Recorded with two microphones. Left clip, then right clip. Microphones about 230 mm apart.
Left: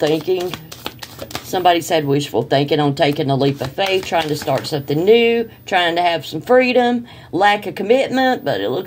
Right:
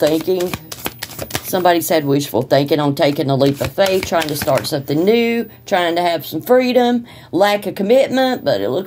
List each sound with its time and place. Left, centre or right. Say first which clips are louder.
0.0 s speech: right 2 dB; right